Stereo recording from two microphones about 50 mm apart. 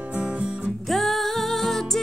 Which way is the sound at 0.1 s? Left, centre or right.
Right.